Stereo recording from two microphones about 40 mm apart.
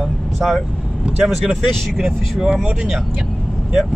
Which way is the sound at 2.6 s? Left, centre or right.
Right.